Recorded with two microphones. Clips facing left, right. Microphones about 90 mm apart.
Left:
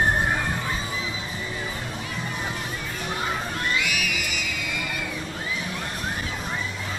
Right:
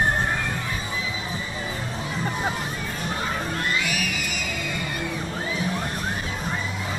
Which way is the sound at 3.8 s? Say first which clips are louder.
Right 1 dB; 40° right (ahead or behind).